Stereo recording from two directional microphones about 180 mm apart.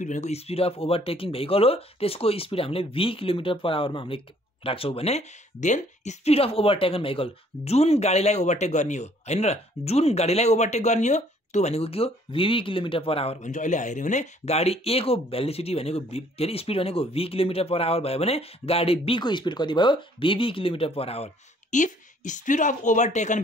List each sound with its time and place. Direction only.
0.0 s a woman's voice: 40° left (ahead or behind)